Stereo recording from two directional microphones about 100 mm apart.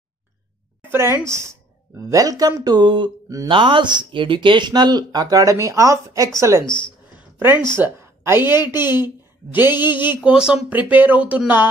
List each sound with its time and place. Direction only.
0.8 s a woman's voice: 25° right (ahead or behind)
6.6 s speech: 50° left (ahead or behind)
7.3 s speech: 20° right (ahead or behind)
10.2 s speech: 10° right (ahead or behind)